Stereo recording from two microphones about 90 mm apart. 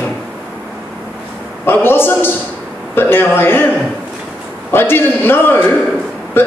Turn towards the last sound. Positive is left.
turn(degrees=25)  # may be behind; listen again after turning